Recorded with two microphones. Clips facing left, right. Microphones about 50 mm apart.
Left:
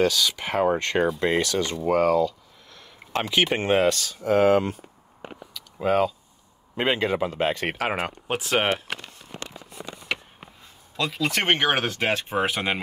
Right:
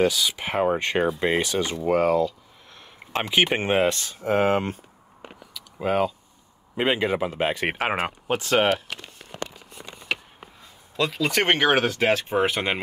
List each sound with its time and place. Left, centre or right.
0.0 s speech: centre
4.0 s speech: right
5.5 s a sound: centre
6.8 s speech: centre
7.7 s speech: right
8.3 s speech: centre
11.1 s speech: centre